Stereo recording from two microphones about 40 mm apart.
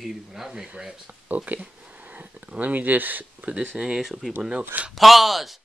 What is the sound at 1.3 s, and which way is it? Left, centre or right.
Speech, right.